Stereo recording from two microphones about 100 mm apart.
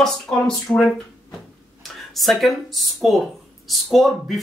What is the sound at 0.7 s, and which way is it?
Speech, 30° left (ahead or behind).